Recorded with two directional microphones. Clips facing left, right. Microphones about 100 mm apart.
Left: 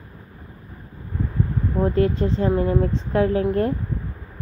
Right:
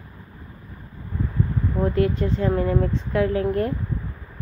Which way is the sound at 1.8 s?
30° left (ahead or behind).